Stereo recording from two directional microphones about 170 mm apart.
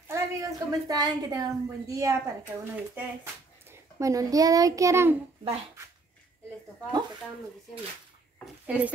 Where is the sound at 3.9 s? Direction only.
20° right (ahead or behind).